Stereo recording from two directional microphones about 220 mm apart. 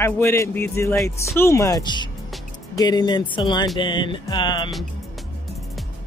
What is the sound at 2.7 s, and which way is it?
Music, 20° left (ahead or behind).